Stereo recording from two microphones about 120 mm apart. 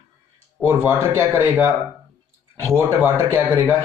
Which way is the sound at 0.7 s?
20° right (ahead or behind).